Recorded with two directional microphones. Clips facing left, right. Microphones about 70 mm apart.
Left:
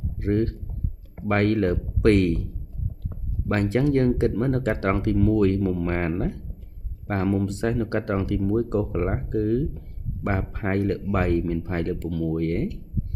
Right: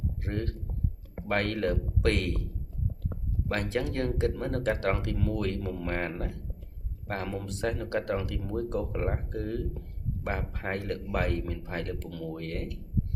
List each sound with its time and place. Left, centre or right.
0.2 s a man's voice: left
3.4 s speech: left